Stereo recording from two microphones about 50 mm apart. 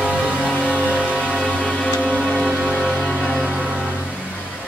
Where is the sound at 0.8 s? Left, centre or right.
Right.